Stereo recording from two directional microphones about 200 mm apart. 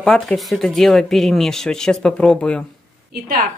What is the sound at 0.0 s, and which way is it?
Speech, 5° left (ahead or behind).